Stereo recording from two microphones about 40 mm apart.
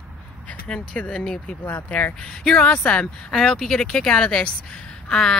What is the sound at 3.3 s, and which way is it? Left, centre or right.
Speech, centre.